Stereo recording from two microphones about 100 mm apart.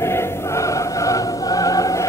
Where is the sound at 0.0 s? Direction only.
25° left (ahead or behind).